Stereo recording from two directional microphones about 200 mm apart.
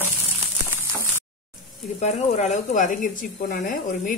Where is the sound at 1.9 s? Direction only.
35° left (ahead or behind).